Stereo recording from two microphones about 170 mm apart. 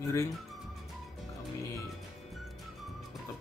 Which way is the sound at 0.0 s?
15° left (ahead or behind).